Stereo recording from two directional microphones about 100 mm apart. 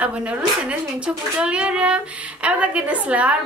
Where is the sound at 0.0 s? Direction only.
10° right (ahead or behind).